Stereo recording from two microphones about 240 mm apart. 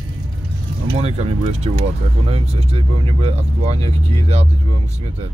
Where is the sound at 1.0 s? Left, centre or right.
Right.